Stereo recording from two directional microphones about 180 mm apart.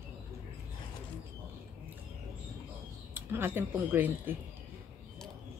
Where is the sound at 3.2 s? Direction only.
15° right (ahead or behind).